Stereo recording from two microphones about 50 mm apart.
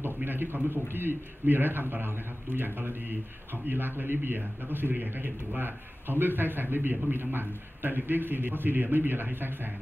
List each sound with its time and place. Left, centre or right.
0.0 s a man's voice: right